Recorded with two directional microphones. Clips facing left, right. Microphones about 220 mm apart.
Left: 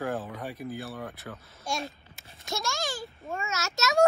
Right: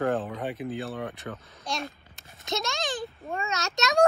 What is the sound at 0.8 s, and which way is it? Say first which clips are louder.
A child's voice: right 4 dB; centre (ahead or behind).